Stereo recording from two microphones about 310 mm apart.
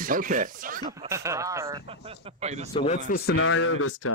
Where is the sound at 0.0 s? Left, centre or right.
Right.